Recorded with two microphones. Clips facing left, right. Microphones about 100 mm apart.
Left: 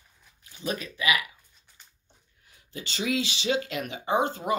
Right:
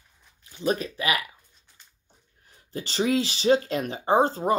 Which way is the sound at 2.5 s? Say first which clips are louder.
Right 4 dB; 35° right (ahead or behind).